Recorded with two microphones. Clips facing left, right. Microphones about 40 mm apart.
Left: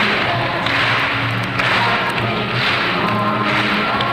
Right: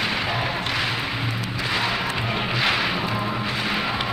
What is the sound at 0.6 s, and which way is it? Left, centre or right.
Music, left.